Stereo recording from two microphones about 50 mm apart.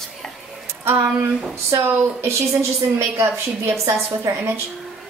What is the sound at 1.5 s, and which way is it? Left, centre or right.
Speech, right.